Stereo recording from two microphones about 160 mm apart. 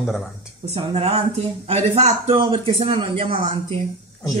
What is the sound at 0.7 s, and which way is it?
A man's voice, 40° right (ahead or behind).